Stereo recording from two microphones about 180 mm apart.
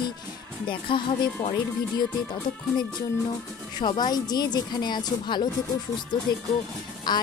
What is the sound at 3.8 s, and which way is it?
A woman's voice, 25° left (ahead or behind).